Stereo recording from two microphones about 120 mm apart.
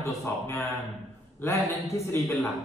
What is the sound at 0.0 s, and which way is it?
Speech, 25° left (ahead or behind).